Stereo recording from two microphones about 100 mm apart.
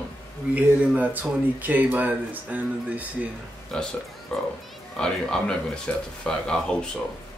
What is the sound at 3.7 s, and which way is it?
A man's voice, 5° left (ahead or behind).